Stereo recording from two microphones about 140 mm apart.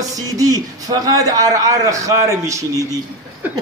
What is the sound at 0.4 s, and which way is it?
A man's voice, 25° right (ahead or behind).